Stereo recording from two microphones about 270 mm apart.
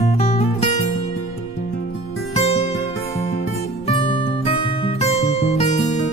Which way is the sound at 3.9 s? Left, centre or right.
Left.